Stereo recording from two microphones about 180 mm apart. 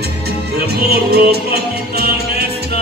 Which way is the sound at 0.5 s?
60° right (ahead or behind).